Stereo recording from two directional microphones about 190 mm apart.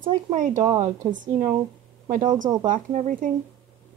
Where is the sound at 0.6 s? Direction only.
25° right (ahead or behind).